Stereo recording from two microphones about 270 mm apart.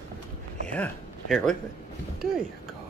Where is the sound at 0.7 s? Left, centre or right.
Centre.